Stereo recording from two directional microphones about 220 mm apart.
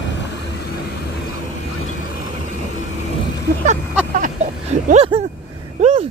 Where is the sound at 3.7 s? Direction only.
35° right (ahead or behind).